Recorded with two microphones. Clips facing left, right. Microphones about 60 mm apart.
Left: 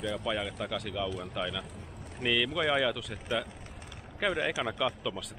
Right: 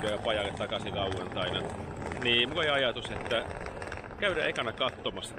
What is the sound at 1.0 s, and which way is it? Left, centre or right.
Speech, right.